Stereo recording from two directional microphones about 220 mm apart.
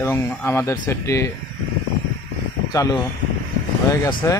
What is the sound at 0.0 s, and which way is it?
Speech, 10° left (ahead or behind).